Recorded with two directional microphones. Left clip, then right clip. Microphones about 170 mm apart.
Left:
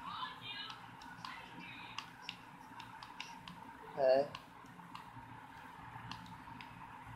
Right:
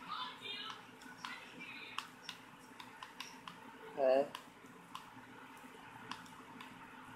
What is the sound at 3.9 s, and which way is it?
Speech, 5° right (ahead or behind).